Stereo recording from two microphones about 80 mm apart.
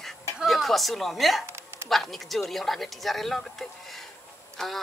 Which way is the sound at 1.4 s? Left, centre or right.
Right.